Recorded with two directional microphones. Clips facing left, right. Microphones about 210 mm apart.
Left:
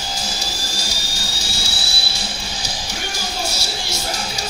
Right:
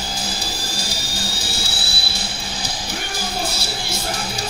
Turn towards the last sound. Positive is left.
turn(degrees=-55)  # may be behind; listen again after turning